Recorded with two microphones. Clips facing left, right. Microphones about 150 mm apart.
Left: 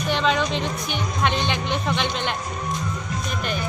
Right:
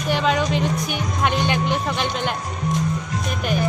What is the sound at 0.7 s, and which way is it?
Speech, 45° right (ahead or behind).